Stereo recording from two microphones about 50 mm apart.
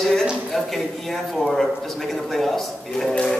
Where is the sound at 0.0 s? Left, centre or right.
Centre.